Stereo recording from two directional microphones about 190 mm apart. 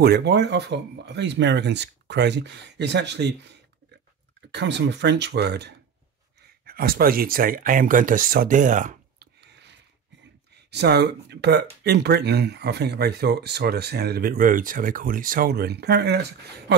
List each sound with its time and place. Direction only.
0.0 s speech: 60° right (ahead or behind); by 9.3 s 40° right (ahead or behind)
9.4 s a sound: 65° right (ahead or behind)
10.7 s speech: 60° right (ahead or behind)